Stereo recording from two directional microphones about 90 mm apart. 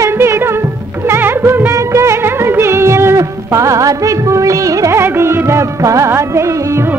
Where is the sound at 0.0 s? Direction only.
30° right (ahead or behind).